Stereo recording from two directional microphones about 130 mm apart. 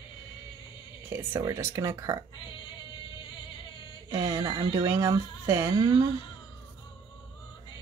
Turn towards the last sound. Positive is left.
turn(degrees=-30)  # may be behind; listen again after turning